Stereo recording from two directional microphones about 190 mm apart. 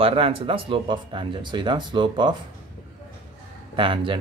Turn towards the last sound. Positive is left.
turn(degrees=-25)  # may be behind; listen again after turning